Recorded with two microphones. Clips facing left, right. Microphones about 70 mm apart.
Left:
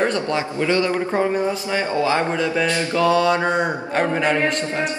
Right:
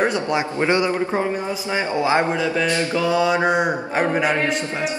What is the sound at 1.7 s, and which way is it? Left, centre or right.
Speech, centre.